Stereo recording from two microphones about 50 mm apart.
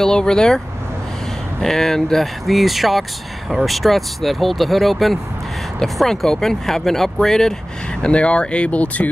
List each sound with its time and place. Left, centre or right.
0.0 s speech: centre
1.6 s speech: centre
8.0 s speech: left